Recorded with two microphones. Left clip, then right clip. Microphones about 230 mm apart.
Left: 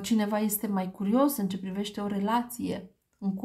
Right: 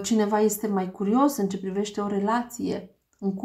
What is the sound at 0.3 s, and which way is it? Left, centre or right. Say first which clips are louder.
Speech: right 7 dB; left.